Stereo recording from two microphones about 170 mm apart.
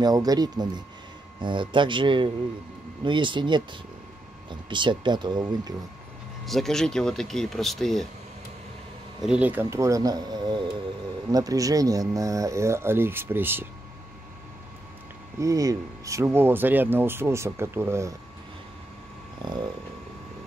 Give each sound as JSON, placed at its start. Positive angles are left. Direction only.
{"t": 0.0, "sound": "speech", "side_deg": -20}
{"t": 6.4, "sound": "speech", "side_deg": 0}
{"t": 9.2, "sound": "speech", "side_deg": -5}
{"t": 15.3, "sound": "speech", "side_deg": -20}
{"t": 19.4, "sound": "speech", "side_deg": -25}